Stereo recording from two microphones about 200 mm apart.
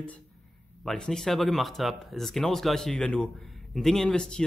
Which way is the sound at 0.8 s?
5° left (ahead or behind).